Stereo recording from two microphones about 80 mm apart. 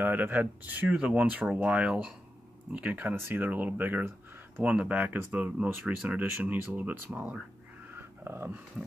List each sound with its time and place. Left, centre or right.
0.0 s speech: right
7.9 s dog: right